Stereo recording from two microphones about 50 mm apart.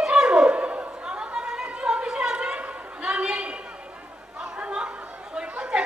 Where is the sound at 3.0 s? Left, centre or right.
Right.